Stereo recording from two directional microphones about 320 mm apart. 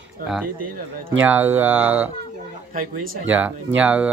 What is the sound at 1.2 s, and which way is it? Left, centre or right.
Speech, centre.